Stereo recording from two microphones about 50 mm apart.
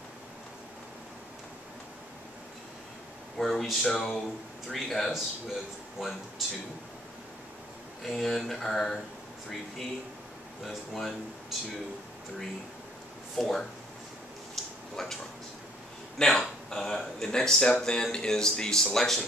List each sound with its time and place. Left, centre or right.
3.3 s speech: centre
8.0 s speech: centre
10.6 s speech: centre
13.4 s speech: centre
14.5 s a sound: centre
16.3 s speech: centre